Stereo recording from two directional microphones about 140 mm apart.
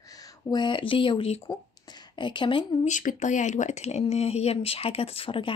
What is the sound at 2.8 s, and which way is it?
Speech, 65° left (ahead or behind).